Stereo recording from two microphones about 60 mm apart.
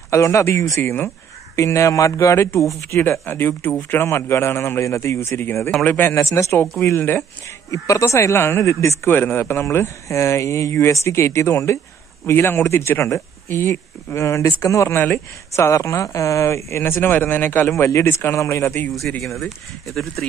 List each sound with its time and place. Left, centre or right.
0.1 s a man's voice: left
3.1 s a man's voice: left
5.4 s speech: left
6.0 s speech: left
6.8 s speech: left
7.7 s a man's voice: left
17.6 s a man's voice: left
19.2 s speech: centre